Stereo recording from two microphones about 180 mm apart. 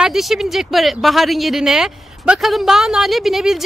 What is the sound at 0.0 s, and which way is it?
Speech, centre (ahead or behind).